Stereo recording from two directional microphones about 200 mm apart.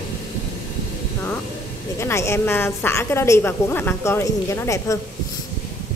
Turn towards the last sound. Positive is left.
turn(degrees=15)  # may be behind; listen again after turning